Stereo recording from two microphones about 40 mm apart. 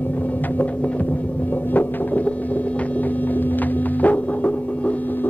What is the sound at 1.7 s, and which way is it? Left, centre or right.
Music, left.